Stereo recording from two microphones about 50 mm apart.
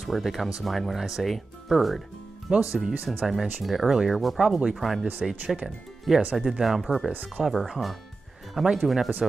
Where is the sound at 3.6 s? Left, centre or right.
Centre.